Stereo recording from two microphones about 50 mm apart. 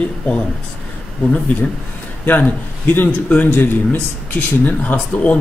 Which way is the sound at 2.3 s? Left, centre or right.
Left.